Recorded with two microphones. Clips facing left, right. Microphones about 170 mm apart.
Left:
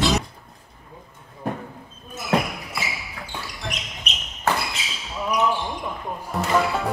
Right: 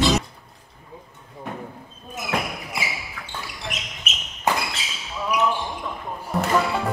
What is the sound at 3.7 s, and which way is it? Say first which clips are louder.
Basketball bounce: even; centre (ahead or behind).